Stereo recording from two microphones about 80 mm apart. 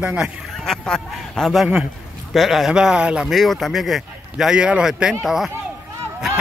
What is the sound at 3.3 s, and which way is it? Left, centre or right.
Speech, centre.